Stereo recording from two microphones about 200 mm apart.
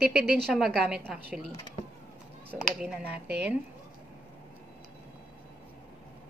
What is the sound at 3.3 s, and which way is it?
Speech, 55° right (ahead or behind).